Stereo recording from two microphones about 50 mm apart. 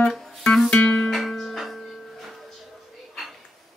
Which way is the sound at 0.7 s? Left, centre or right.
Left.